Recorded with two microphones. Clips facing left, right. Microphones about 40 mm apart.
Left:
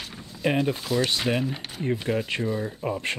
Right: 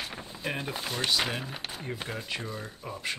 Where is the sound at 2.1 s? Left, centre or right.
Centre.